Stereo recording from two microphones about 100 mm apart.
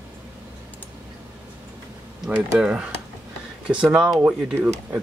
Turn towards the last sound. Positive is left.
turn(degrees=-10)  # may be behind; listen again after turning